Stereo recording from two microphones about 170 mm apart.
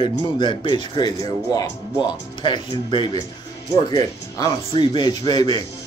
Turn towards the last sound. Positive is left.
turn(degrees=25)  # may be behind; listen again after turning